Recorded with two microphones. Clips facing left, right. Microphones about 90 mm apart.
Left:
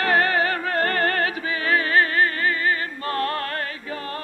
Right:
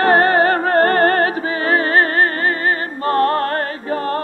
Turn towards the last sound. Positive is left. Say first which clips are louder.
# right 11 dB
turn(degrees=-40)  # may be behind; listen again after turning